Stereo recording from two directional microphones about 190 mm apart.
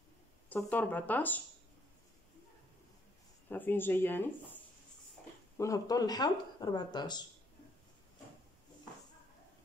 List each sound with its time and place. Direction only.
0.5 s speech: 10° left (ahead or behind)
3.4 s speech: 10° left (ahead or behind)
5.6 s speech: 20° left (ahead or behind)